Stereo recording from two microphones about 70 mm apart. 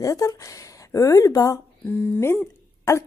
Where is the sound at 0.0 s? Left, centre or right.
Left.